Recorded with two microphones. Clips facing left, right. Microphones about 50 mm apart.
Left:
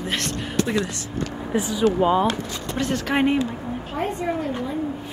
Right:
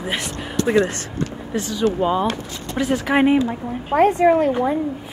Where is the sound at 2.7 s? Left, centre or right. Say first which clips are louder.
Right 4 dB; centre.